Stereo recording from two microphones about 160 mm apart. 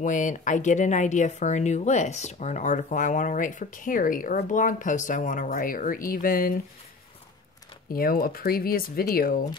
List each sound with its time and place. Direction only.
0.0 s speech: 55° left (ahead or behind)
7.9 s speech: 65° left (ahead or behind)